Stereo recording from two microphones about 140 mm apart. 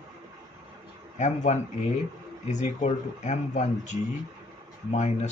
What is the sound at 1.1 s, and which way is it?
Speech, 60° left (ahead or behind).